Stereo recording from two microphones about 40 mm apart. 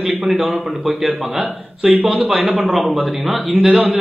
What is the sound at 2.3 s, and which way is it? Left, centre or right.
A man's voice, centre.